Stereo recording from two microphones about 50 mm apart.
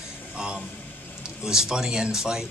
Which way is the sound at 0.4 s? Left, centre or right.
Centre.